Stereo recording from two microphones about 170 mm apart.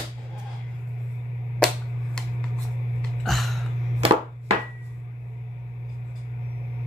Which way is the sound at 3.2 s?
Centre (ahead or behind).